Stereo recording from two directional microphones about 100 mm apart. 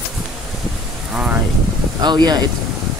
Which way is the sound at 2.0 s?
45° right (ahead or behind).